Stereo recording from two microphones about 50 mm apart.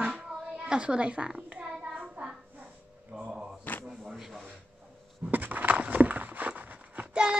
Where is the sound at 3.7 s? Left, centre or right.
Left.